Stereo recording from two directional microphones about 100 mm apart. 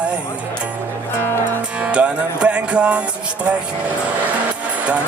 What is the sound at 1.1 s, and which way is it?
Music, 20° left (ahead or behind).